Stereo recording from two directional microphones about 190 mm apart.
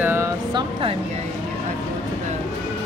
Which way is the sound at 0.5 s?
25° right (ahead or behind).